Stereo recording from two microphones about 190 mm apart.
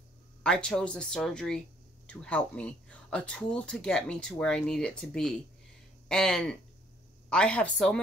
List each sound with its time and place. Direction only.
0.4 s speech: 5° left (ahead or behind)